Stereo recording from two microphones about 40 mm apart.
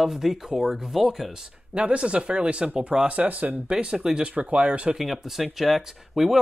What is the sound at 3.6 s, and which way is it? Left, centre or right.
Speech, right.